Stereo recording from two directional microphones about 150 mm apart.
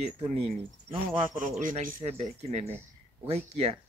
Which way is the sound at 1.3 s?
55° right (ahead or behind).